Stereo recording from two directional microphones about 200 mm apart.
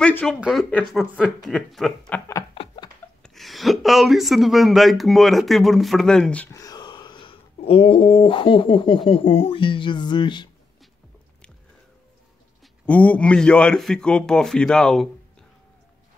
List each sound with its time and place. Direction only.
0.0 s a man's voice: 5° left (ahead or behind)
2.5 s a sound: 25° left (ahead or behind)
3.2 s speech: centre (ahead or behind); by 10.5 s 25° left (ahead or behind)
12.8 s a man's voice: 5° left (ahead or behind)